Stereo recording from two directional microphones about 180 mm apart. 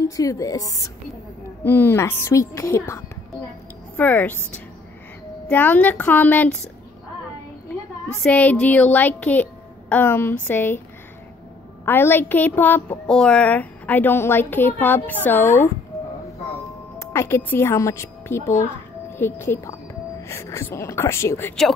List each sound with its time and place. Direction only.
0.1 s a woman's voice: 20° left (ahead or behind)
5.5 s a woman's voice: 10° left (ahead or behind)
8.2 s a woman's voice: 5° left (ahead or behind)
11.8 s a woman's voice: 10° left (ahead or behind)
17.0 s a child's voice: 15° left (ahead or behind)